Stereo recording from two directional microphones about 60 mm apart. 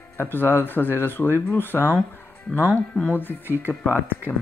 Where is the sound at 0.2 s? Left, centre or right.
Left.